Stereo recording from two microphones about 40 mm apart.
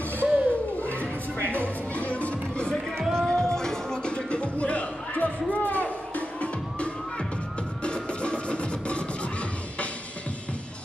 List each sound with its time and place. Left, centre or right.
0.2 s a sound: right
0.7 s music: left
3.1 s music: centre